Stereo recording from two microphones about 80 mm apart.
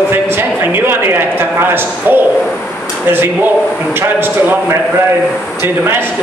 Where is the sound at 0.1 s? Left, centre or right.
Right.